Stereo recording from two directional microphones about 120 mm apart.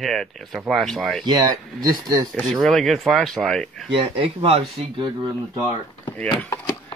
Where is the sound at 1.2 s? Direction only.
35° right (ahead or behind).